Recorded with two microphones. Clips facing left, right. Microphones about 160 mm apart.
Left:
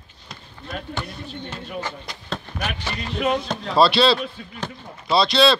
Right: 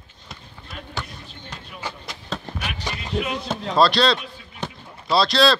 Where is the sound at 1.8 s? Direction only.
Centre (ahead or behind).